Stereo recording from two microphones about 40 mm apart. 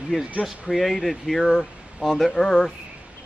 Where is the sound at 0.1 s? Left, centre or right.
Centre.